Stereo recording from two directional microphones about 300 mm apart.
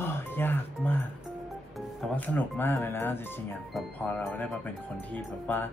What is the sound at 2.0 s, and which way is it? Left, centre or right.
Speech, centre.